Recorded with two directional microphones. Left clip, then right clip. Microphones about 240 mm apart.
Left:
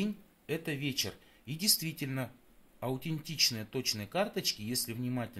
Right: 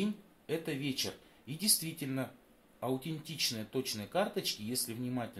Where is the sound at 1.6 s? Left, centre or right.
Left.